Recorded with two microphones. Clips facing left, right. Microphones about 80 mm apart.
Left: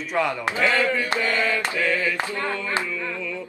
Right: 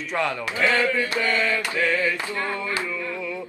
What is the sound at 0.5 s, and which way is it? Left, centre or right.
Mantra, left.